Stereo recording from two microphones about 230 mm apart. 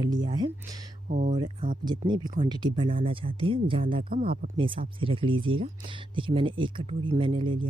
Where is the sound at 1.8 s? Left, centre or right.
Centre.